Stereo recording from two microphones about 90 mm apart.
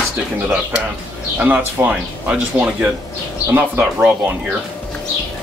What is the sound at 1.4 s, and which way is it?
Speech, 20° right (ahead or behind).